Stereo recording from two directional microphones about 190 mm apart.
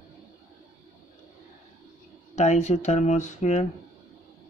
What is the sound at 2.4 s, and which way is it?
Speech, 35° left (ahead or behind).